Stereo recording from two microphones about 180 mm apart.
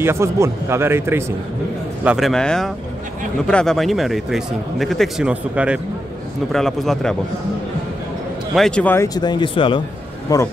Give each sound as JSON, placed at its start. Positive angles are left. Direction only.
{"t": 0.0, "sound": "speech", "side_deg": -15}
{"t": 2.0, "sound": "a man's voice", "side_deg": 0}
{"t": 8.5, "sound": "speech", "side_deg": 5}